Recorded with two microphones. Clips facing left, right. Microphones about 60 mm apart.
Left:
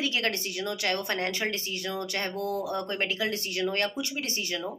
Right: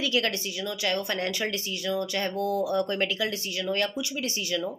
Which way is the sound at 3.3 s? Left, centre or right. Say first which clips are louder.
Left 1 dB; left.